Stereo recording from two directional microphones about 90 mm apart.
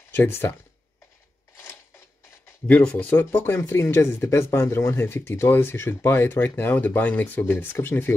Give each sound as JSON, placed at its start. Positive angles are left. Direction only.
{"t": 0.1, "sound": "speech", "side_deg": 25}
{"t": 2.7, "sound": "speech", "side_deg": 15}